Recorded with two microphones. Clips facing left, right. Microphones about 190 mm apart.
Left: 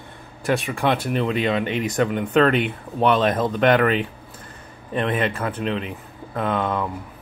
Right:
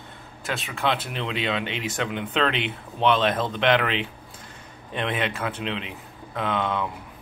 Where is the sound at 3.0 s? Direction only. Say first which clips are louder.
Left 3 dB; 5° left (ahead or behind).